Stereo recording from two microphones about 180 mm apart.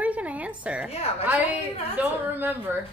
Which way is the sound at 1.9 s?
10° right (ahead or behind).